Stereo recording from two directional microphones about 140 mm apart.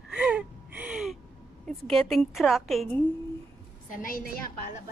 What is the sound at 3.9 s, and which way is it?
Speech, 85° left.